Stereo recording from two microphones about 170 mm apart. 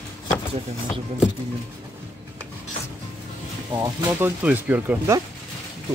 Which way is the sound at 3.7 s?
15° right (ahead or behind).